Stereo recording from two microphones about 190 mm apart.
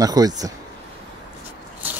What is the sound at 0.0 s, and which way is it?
Speech, 20° right (ahead or behind).